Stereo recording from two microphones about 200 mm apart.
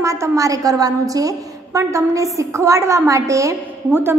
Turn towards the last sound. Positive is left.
turn(degrees=-10)  # may be behind; listen again after turning